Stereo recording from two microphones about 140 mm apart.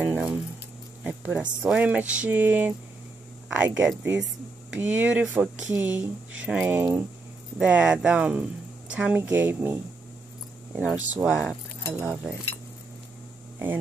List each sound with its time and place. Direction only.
0.0 s keys jangling: 10° right (ahead or behind)
1.0 s speech: 10° right (ahead or behind)
11.8 s speech: 25° right (ahead or behind)